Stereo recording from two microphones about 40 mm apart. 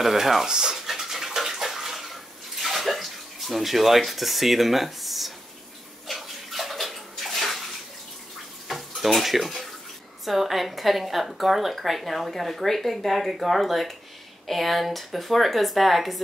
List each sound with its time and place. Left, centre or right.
0.0 s a woman's voice: centre
0.5 s speech: centre
0.7 s bathtub: centre
8.6 s dishes: centre
10.2 s a woman's voice: centre